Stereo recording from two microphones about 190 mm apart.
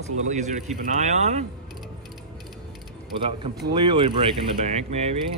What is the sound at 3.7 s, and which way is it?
Speech, 25° right (ahead or behind).